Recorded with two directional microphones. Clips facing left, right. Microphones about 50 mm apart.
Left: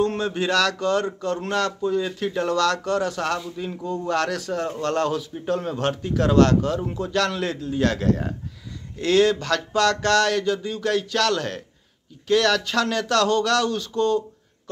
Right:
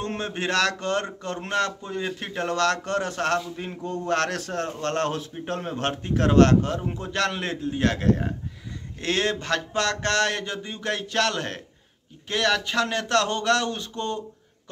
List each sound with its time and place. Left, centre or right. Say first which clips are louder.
0.0 s a man's voice: left 6 dB; right